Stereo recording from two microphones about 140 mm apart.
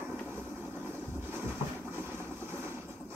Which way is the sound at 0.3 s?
15° right (ahead or behind).